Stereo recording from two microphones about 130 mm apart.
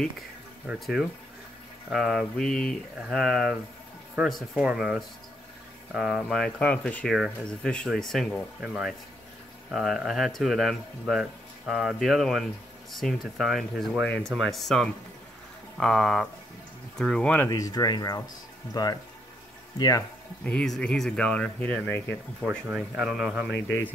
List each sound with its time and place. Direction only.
0.7 s speech: centre (ahead or behind)
7.1 s speech: 5° right (ahead or behind)
17.5 s speech: 30° left (ahead or behind)
20.4 s speech: 5° left (ahead or behind)